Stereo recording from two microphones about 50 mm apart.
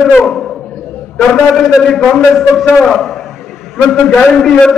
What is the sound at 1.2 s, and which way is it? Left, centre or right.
A man's voice, centre.